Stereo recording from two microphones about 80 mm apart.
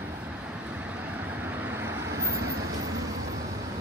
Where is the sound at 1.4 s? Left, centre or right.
Right.